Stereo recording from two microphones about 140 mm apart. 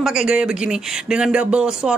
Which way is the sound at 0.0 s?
5° right (ahead or behind).